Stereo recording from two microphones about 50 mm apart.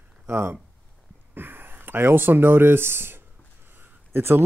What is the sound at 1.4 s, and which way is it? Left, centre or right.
Speech, right.